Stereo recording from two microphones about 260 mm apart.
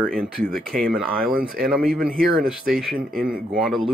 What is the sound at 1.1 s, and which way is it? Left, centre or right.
Speech, right.